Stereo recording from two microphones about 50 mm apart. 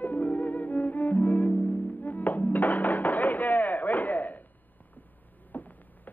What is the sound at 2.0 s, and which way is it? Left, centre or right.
Music, left.